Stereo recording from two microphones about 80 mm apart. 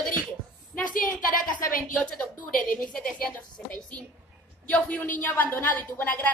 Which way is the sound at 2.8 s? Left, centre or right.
Centre.